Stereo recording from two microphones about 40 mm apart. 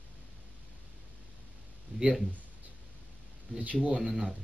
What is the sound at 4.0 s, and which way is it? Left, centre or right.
Speech, centre.